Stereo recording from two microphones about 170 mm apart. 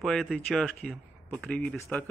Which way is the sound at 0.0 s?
Centre (ahead or behind).